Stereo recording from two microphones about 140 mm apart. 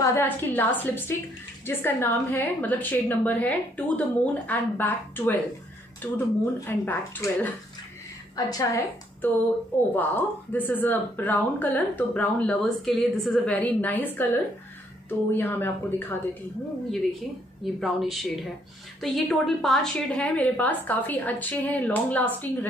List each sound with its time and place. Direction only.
0.0 s speech: 15° left (ahead or behind)
8.4 s a woman's voice: 25° left (ahead or behind)
9.9 s speech: 10° left (ahead or behind)
17.7 s speech: centre (ahead or behind)